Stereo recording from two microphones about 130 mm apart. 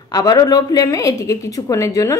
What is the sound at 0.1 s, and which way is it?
A woman's voice, 30° left (ahead or behind).